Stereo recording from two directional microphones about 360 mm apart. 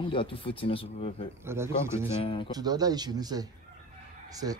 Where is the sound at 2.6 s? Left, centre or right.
Centre.